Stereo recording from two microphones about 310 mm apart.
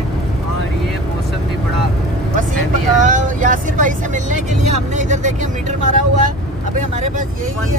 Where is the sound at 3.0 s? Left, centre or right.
Right.